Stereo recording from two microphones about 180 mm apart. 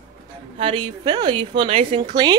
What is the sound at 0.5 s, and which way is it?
Speech, 30° right (ahead or behind).